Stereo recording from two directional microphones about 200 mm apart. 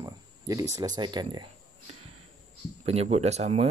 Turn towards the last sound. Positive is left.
turn(degrees=-30)  # may be behind; listen again after turning